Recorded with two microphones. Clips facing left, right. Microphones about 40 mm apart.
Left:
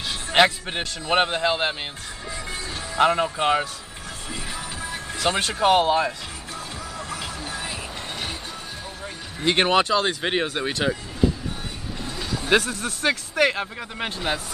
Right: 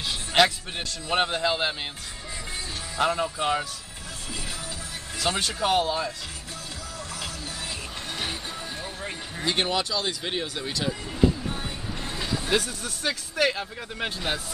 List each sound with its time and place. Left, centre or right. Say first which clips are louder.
0.3 s music: left 3 dB; left
0.7 s a man's voice: left 5 dB; left
3.0 s speech: left 5 dB; left
5.4 s speech: left 6 dB; left
7.1 s music: left 4 dB; left
9.4 s speech: left 7 dB; left
12.4 s speech: left 8 dB; left
13.9 s speech: left 2 dB; centre